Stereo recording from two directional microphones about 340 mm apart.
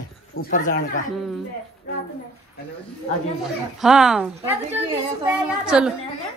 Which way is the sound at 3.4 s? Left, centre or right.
Centre.